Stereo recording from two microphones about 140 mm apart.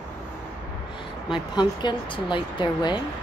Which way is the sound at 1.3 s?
30° left (ahead or behind).